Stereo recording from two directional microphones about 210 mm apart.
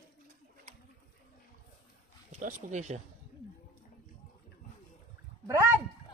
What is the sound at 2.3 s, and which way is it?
Speech, 35° right (ahead or behind).